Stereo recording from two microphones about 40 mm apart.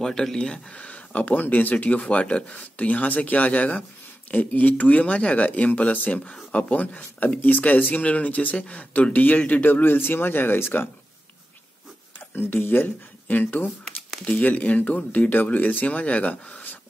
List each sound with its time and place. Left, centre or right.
0.0 s speech: centre
0.4 s speech: left
0.8 s speech: left
5.7 s speech: left
12.4 s speech: left
14.3 s speech: left